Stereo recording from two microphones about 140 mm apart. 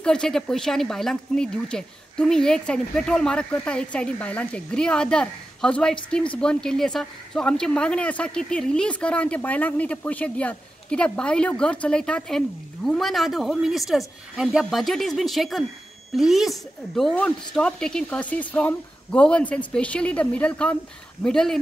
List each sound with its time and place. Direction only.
0.0 s speech: 5° left (ahead or behind)